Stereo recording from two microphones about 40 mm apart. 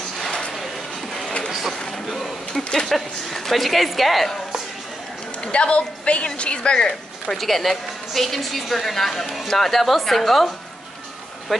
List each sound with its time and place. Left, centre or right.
2.0 s a sound: centre
2.9 s a woman's voice: centre
5.4 s speech: left
7.3 s a woman's voice: centre